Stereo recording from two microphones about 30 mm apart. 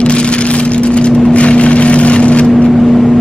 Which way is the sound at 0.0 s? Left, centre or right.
Left.